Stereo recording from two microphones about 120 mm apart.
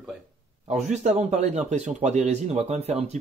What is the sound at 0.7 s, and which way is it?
A man's voice, 75° right (ahead or behind).